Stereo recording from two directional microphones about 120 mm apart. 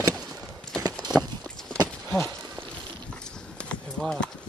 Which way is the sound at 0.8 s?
35° right (ahead or behind).